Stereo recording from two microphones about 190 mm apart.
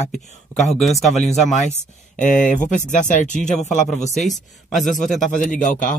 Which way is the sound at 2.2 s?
40° left (ahead or behind).